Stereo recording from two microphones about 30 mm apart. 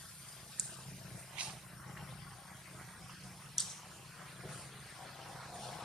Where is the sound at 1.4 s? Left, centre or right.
Right.